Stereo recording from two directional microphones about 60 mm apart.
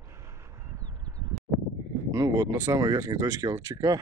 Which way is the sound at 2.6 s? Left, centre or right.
Right.